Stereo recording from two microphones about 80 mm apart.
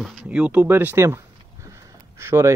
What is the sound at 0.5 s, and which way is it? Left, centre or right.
Speech, right.